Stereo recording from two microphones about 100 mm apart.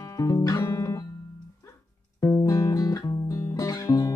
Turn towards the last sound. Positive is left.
turn(degrees=40)  # may be behind; listen again after turning